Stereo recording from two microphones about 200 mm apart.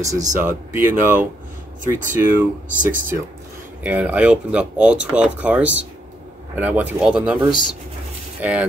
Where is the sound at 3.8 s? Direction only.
5° right (ahead or behind).